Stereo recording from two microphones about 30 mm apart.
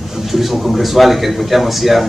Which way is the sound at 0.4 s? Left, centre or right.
Centre.